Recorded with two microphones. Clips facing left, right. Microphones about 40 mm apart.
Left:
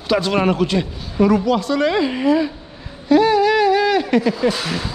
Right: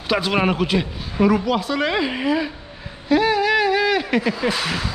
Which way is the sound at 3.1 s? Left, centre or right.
Centre.